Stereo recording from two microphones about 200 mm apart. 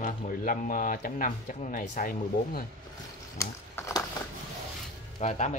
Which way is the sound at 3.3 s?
15° left (ahead or behind).